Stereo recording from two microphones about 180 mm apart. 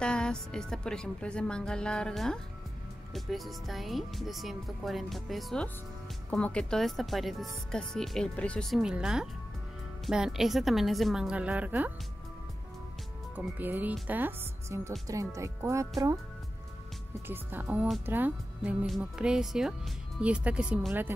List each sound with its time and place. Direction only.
0.0 s speech: 5° left (ahead or behind)
13.6 s speech: 10° right (ahead or behind)
17.3 s speech: 10° right (ahead or behind)